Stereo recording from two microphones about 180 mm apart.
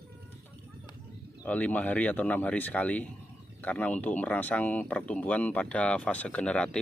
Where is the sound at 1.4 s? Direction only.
10° left (ahead or behind).